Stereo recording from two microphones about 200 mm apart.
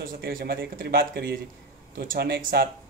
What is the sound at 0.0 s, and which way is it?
Speech, 45° right (ahead or behind).